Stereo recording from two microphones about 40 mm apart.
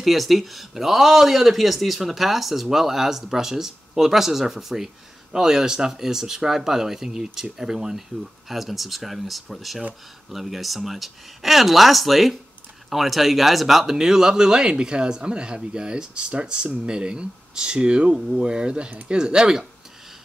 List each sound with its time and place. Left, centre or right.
0.0 s speech: centre